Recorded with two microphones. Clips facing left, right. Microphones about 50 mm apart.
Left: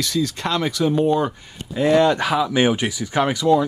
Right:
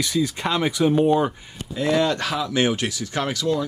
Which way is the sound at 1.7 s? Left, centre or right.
Centre.